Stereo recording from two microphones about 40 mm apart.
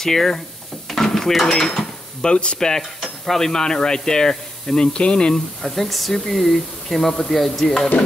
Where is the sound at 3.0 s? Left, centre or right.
Centre.